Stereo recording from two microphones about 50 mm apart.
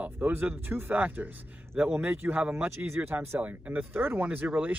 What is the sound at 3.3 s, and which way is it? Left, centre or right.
Speech, right.